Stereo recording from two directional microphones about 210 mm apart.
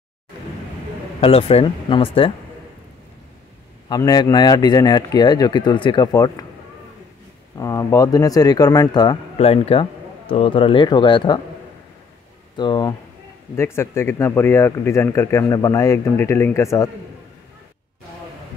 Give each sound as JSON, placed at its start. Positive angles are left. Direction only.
{"t": 1.2, "sound": "speech", "side_deg": 25}
{"t": 3.9, "sound": "speech", "side_deg": 20}
{"t": 7.5, "sound": "speech", "side_deg": 15}
{"t": 12.5, "sound": "speech", "side_deg": 20}